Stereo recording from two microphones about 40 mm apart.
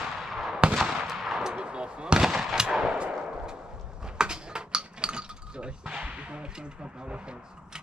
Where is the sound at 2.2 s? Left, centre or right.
Centre.